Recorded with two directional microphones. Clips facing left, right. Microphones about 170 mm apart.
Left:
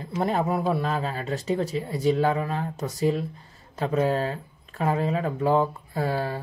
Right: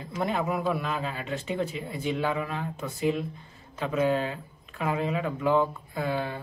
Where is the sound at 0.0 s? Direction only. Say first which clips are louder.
Left 3 dB; 40° left (ahead or behind).